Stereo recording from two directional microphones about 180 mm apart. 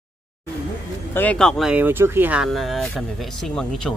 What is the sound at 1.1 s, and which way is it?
Speech, 10° left (ahead or behind).